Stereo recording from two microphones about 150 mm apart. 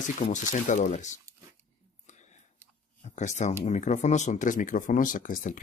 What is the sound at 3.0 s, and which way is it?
Speech, 50° left (ahead or behind).